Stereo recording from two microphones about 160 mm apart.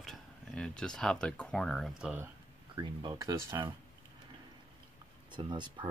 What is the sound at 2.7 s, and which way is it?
Speech, 25° right (ahead or behind).